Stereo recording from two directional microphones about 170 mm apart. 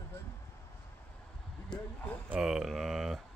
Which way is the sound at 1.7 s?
10° left (ahead or behind).